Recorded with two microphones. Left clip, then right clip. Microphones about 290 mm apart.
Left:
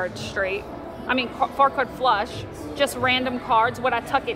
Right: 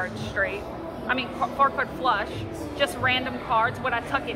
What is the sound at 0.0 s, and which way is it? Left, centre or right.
A woman's voice, left.